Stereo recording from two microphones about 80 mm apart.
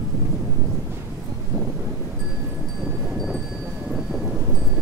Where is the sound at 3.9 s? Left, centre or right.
Centre.